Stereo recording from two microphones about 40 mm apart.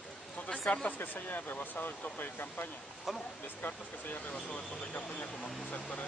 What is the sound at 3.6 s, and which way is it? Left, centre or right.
Speech, left.